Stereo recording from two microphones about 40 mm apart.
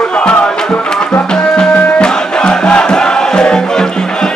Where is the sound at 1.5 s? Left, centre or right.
Left.